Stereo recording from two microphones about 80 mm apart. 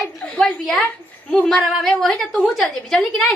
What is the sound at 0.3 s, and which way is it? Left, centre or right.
A woman's voice, centre.